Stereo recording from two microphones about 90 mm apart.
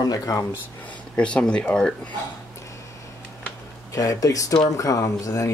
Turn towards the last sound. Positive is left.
turn(degrees=35)  # may be behind; listen again after turning